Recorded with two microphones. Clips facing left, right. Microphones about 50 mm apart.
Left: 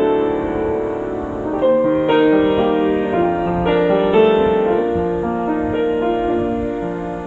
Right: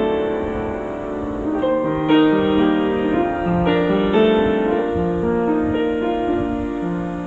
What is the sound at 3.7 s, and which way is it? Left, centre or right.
Music, centre.